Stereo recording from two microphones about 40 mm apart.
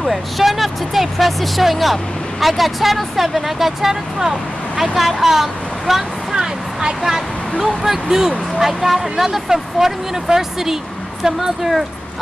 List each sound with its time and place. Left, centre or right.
0.0 s speech: centre
6.3 s a sound: centre
7.6 s speech: centre